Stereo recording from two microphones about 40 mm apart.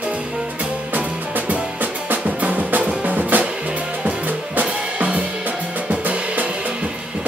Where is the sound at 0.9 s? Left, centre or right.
Right.